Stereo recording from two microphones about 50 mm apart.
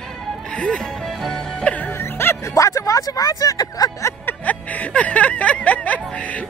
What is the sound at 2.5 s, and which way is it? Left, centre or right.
Speech, left.